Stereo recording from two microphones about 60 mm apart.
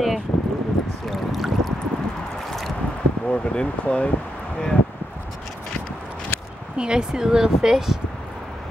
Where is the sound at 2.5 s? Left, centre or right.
Centre.